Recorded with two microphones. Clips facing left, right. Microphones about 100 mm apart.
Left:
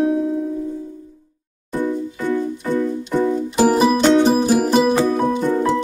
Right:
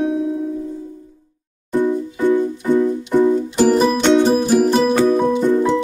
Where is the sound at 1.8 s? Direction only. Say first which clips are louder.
Right 4 dB; 15° right (ahead or behind).